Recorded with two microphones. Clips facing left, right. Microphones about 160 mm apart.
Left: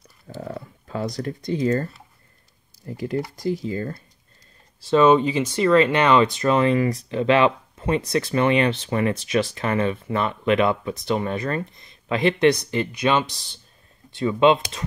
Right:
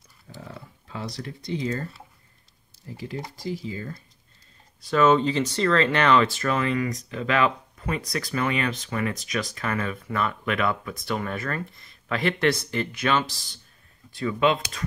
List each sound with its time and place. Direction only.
0.4 s speech: 45° left (ahead or behind)
2.9 s speech: 50° left (ahead or behind)
4.8 s speech: 20° left (ahead or behind)